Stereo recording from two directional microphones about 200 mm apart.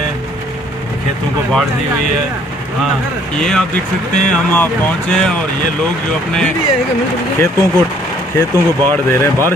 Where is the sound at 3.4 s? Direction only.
5° left (ahead or behind).